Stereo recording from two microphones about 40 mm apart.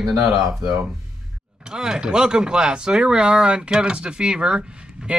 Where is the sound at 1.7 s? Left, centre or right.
Centre.